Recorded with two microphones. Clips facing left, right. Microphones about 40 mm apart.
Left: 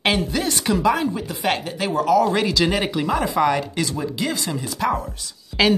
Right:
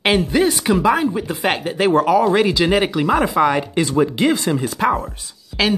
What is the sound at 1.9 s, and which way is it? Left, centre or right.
Speech, right.